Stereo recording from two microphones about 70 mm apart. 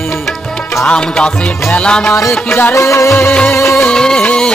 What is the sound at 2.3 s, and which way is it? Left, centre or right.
Music, left.